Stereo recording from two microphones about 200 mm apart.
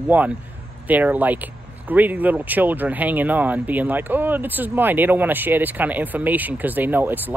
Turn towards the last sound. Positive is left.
turn(degrees=-10)  # may be behind; listen again after turning